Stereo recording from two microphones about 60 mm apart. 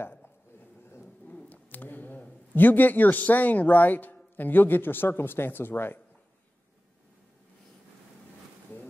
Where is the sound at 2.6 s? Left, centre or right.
Left.